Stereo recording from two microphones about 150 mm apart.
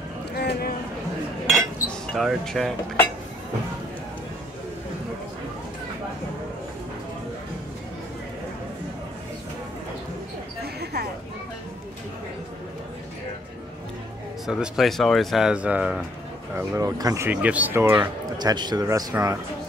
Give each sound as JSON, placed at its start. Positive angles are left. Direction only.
{"t": 0.4, "sound": "a sound", "side_deg": 90}
{"t": 1.5, "sound": "cutlery", "side_deg": 0}
{"t": 10.6, "sound": "a sound", "side_deg": -90}
{"t": 14.4, "sound": "speech", "side_deg": -5}
{"t": 16.5, "sound": "speech", "side_deg": -20}
{"t": 17.3, "sound": "speech", "side_deg": -10}
{"t": 17.9, "sound": "speech", "side_deg": -30}